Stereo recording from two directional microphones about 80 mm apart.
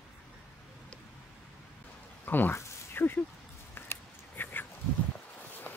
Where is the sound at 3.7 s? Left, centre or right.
Left.